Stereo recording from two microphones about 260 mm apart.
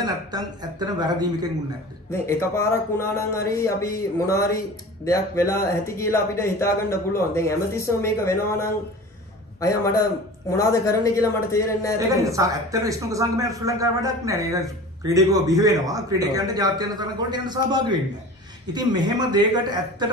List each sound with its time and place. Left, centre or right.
0.0 s a man's voice: centre
2.2 s speech: centre
12.3 s a man's voice: centre